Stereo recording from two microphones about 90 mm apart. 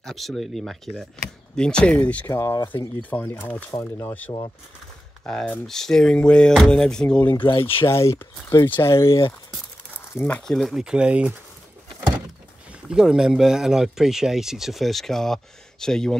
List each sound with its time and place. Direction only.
0.0 s speech: 5° left (ahead or behind)
2.3 s speech: 40° left (ahead or behind)
3.0 s speech: 20° left (ahead or behind)
3.7 s speech: 30° left (ahead or behind)
5.2 s speech: 15° left (ahead or behind)
7.3 s speech: 75° left (ahead or behind)
7.9 s speech: 30° left (ahead or behind)
10.1 s speech: 20° left (ahead or behind)
10.4 s speech: 5° left (ahead or behind); by 11.3 s 15° right (ahead or behind)
12.9 s speech: 5° right (ahead or behind)